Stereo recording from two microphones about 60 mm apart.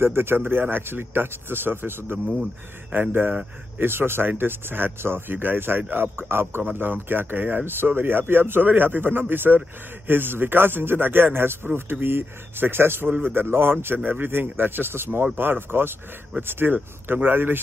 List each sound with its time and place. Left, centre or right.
0.0 s speech: right